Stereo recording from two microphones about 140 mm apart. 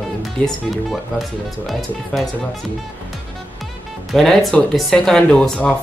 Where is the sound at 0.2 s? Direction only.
Centre (ahead or behind).